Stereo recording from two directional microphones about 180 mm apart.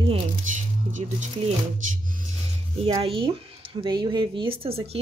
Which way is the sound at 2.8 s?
30° right (ahead or behind).